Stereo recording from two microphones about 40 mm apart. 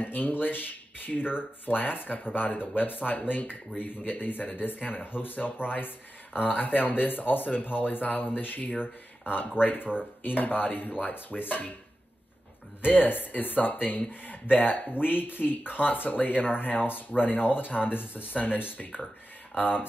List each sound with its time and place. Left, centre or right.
0.0 s speech: left
12.8 s speech: left